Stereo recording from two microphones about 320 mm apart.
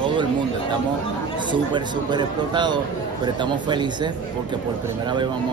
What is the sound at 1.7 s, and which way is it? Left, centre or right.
Speech, centre.